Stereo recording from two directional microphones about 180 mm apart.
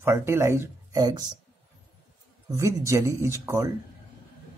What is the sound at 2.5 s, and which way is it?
Speech, 15° right (ahead or behind).